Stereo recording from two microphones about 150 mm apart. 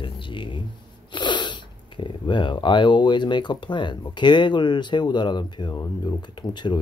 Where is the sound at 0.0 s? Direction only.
35° left (ahead or behind).